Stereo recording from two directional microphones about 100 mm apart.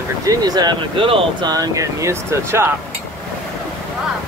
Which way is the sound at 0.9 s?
65° right (ahead or behind).